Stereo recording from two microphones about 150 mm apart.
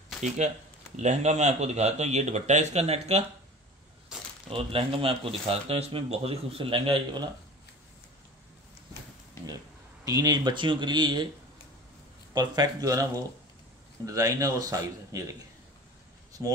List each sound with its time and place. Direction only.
0.4 s speech: 50° right (ahead or behind)
4.1 s a sound: 5° right (ahead or behind)
4.5 s speech: 40° right (ahead or behind)
10.0 s a man's voice: 25° right (ahead or behind)
12.4 s a man's voice: 25° right (ahead or behind)
16.4 s speech: 15° right (ahead or behind)